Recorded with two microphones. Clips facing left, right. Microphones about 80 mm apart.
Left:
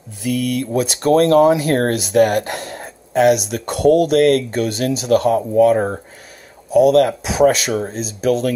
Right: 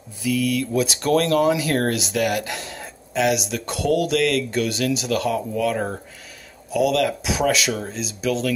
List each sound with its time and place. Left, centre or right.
0.2 s speech: left